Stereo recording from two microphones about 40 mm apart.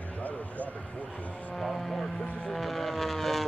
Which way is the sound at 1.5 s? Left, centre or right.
Centre.